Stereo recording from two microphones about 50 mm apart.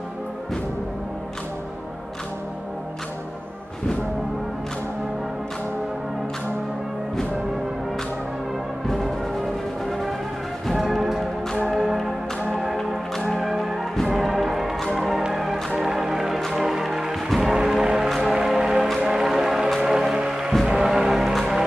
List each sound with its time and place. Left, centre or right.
8.8 s music: centre
13.5 s music: centre
16.3 s music: centre
16.6 s music: centre
17.3 s a sound: centre
18.3 s music: centre